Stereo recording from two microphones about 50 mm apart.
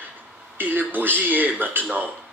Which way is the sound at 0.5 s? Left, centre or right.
Right.